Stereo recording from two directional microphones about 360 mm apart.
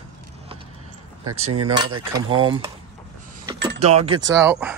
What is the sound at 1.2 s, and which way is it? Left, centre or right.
Speech, right.